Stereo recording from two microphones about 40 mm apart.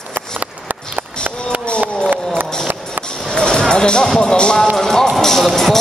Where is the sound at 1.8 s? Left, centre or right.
Right.